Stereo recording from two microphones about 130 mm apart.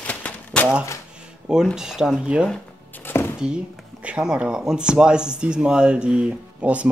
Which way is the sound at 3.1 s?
20° left (ahead or behind).